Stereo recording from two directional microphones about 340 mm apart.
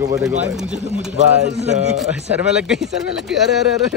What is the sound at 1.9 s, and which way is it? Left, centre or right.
Speech, centre.